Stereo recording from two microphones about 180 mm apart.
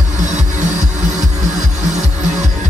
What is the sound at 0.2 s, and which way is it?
Music, 40° right (ahead or behind).